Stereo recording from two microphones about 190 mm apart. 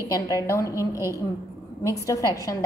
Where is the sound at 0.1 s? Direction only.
20° left (ahead or behind).